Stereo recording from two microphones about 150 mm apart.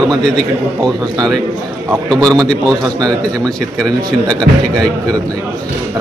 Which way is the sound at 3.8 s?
5° left (ahead or behind).